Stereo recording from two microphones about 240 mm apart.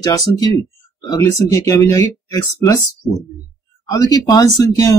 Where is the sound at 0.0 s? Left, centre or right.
Centre.